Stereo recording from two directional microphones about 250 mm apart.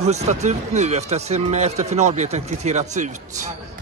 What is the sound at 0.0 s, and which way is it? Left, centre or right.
Speech, right.